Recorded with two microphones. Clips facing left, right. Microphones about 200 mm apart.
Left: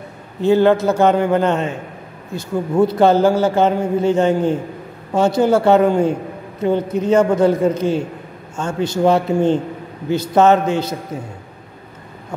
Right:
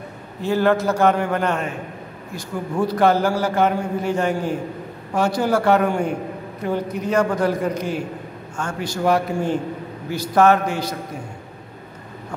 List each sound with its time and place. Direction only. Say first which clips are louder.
0.4 s a man's voice: left 6 dB; 25° left (ahead or behind)